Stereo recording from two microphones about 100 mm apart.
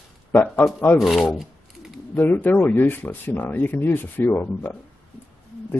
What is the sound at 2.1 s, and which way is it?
A man's voice, 20° left (ahead or behind).